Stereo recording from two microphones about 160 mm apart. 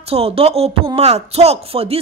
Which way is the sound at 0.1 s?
35° right (ahead or behind).